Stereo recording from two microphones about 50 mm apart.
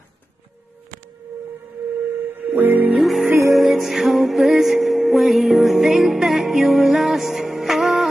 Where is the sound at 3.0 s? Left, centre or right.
Centre.